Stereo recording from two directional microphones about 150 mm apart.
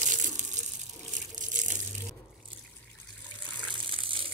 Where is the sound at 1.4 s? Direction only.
55° right (ahead or behind).